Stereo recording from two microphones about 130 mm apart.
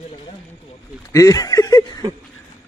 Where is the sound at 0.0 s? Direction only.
45° left (ahead or behind).